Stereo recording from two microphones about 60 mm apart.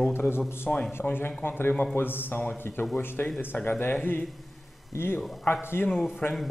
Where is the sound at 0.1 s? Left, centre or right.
Left.